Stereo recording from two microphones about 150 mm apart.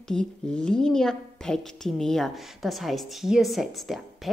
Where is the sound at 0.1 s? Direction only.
5° left (ahead or behind).